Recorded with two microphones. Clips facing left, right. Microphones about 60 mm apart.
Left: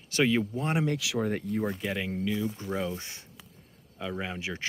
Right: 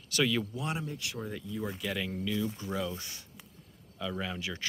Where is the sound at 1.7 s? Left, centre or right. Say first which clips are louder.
Left 3 dB; left.